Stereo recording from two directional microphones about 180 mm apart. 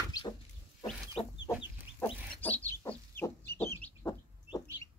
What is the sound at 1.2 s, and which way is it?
Chicken, 35° left (ahead or behind).